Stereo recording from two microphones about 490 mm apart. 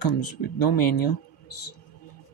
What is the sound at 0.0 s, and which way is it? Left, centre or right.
Speech, left.